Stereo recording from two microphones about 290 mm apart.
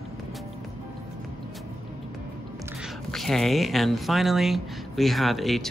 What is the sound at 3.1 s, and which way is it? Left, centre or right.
Speech, centre.